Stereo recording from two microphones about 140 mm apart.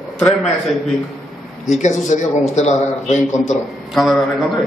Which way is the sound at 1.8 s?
60° left (ahead or behind).